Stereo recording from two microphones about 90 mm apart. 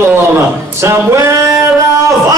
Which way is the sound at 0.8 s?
30° right (ahead or behind).